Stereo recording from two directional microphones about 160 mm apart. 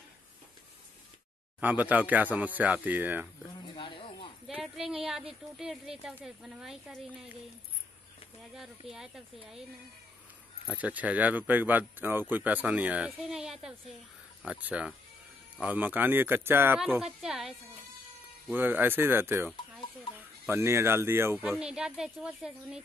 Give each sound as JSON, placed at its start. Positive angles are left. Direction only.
{"t": 1.6, "sound": "speech", "side_deg": -10}
{"t": 3.6, "sound": "snake", "side_deg": 30}
{"t": 4.5, "sound": "a sound", "side_deg": 0}
{"t": 5.6, "sound": "a woman's voice", "side_deg": 0}
{"t": 8.5, "sound": "a woman's voice", "side_deg": 0}
{"t": 10.8, "sound": "speech", "side_deg": -10}
{"t": 16.9, "sound": "a woman's voice", "side_deg": -5}
{"t": 18.5, "sound": "a woman's voice", "side_deg": -10}